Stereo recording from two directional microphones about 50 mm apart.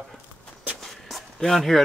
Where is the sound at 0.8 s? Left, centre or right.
Centre.